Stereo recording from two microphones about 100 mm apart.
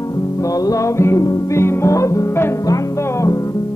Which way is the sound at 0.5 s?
35° left (ahead or behind).